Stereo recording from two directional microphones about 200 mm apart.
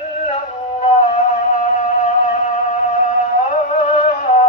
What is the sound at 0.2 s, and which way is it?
Music, 30° left (ahead or behind).